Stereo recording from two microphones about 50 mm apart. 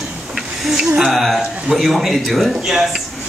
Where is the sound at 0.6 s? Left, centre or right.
Centre.